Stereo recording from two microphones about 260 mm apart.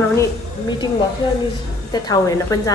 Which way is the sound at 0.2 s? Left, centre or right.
Centre.